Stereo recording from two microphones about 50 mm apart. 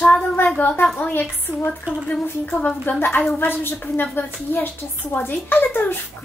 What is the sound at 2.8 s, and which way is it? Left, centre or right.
Speech, left.